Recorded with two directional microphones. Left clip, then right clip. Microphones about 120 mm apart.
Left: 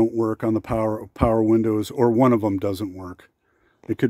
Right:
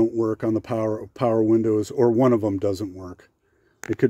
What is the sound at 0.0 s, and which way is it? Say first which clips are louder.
Speech: left 1 dB; 50° left (ahead or behind).